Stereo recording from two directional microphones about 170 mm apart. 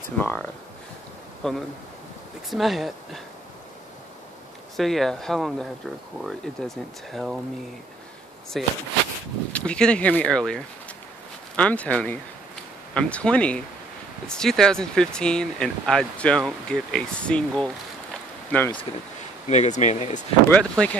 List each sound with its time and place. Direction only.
0.2 s speech: 10° left (ahead or behind)
4.7 s speech: centre (ahead or behind)
8.5 s speech: centre (ahead or behind)
19.4 s speech: 45° left (ahead or behind)
20.4 s speech: 5° left (ahead or behind)